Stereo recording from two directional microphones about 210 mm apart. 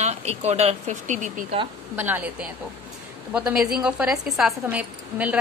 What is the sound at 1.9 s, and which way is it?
Speech, 10° right (ahead or behind).